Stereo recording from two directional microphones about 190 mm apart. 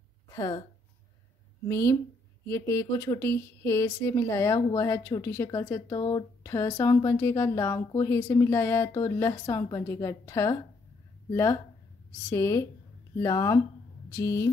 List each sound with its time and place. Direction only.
0.3 s a sound: 20° left (ahead or behind)
1.7 s speech: 15° left (ahead or behind)
12.3 s speech: 15° left (ahead or behind)